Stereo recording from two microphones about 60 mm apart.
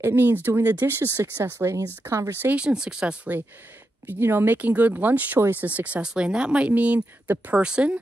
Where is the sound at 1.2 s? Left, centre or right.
Right.